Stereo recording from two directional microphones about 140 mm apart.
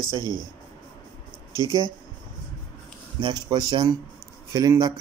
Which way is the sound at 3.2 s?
30° right (ahead or behind).